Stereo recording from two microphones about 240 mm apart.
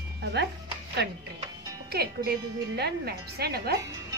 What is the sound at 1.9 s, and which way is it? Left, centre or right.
A woman's voice, right.